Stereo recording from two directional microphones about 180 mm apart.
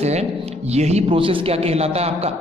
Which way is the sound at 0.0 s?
35° right (ahead or behind).